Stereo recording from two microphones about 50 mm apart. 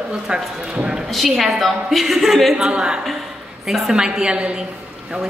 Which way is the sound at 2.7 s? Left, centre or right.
Centre.